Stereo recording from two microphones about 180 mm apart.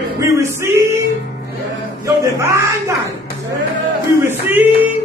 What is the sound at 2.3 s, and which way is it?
Speech, 15° right (ahead or behind).